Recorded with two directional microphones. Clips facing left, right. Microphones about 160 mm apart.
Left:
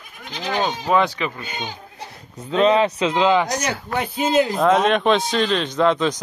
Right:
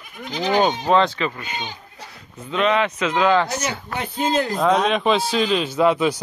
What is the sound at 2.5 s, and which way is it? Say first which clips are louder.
Speech: left 3 dB; 35° left (ahead or behind).